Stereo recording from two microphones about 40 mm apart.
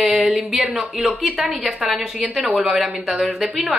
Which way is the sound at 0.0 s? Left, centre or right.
Centre.